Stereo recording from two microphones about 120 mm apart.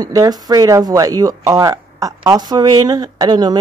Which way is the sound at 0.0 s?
30° right (ahead or behind).